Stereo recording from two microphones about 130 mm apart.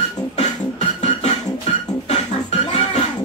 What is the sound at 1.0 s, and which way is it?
Beatboxing, 60° left (ahead or behind).